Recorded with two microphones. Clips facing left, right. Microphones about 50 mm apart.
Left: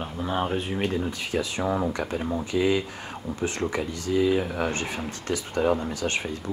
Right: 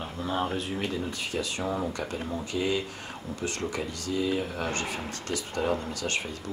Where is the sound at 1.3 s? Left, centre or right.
Left.